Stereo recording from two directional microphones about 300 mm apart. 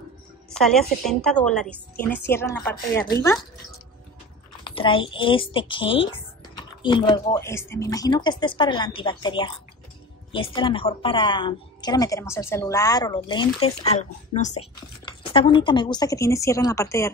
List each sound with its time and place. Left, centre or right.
0.5 s a woman's voice: centre
4.6 s speech: centre